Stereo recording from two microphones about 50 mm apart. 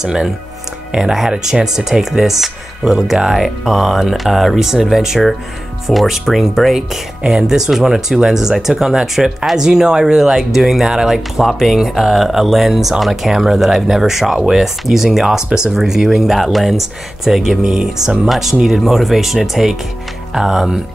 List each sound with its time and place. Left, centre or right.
0.0 s speech: centre